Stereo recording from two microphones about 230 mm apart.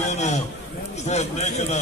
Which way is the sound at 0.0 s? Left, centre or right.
Left.